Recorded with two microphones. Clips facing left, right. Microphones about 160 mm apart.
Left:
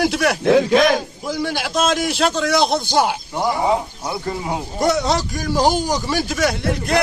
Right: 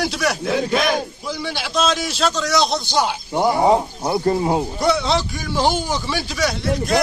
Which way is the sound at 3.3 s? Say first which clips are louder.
Right 6 dB; 25° right (ahead or behind).